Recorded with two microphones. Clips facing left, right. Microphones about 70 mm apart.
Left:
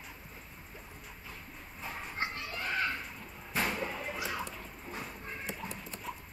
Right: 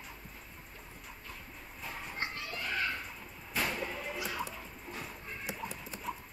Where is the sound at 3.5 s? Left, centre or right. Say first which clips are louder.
Left 2 dB; left.